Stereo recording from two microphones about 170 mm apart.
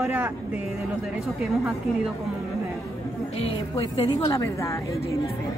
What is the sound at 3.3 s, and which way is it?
Speech, 35° left (ahead or behind).